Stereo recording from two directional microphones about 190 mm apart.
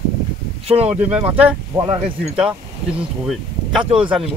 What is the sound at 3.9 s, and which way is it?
Speech, 5° right (ahead or behind).